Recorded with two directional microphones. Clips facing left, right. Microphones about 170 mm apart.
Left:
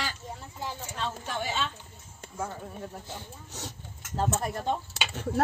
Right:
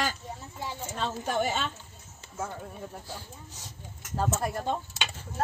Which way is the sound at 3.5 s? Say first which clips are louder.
Left 7 dB; 70° left (ahead or behind).